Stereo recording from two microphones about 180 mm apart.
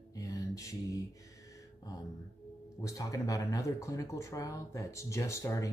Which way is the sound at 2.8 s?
20° left (ahead or behind).